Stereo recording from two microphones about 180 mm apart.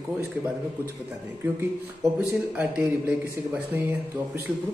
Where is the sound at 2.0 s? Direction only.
10° right (ahead or behind).